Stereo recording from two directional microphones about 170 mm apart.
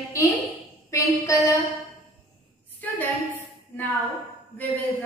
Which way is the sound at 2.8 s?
10° left (ahead or behind).